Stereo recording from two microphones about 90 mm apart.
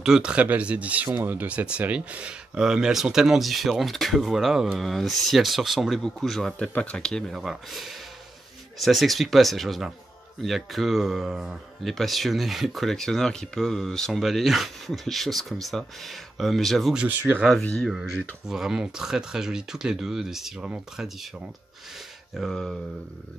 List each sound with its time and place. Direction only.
0.0 s speech: 10° right (ahead or behind); by 17.8 s 10° left (ahead or behind)
18.5 s speech: 5° right (ahead or behind)
22.4 s speech: centre (ahead or behind)